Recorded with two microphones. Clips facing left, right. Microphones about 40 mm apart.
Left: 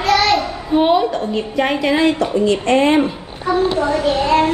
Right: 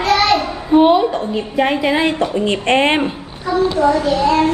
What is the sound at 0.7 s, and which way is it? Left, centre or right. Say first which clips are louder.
A woman's voice: right 3 dB; centre.